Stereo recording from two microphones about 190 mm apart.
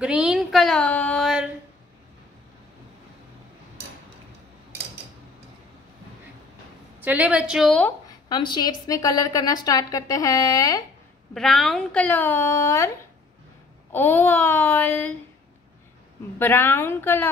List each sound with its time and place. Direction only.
0.0 s a sound: 5° right (ahead or behind)
7.0 s a sound: 10° right (ahead or behind)
8.3 s a woman's voice: 25° left (ahead or behind)
11.3 s speech: centre (ahead or behind)
13.9 s speech: 10° left (ahead or behind)
16.3 s speech: 10° left (ahead or behind)